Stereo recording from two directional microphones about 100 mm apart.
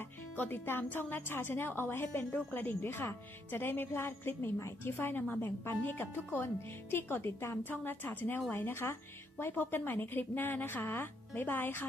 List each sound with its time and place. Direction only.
0.4 s a woman's voice: 20° left (ahead or behind)